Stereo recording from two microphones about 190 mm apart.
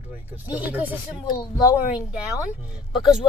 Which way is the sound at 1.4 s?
20° left (ahead or behind).